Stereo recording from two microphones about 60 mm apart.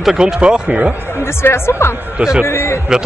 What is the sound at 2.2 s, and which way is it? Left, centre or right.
Speech, centre.